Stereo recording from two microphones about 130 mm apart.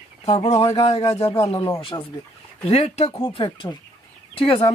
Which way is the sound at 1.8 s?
40° left (ahead or behind).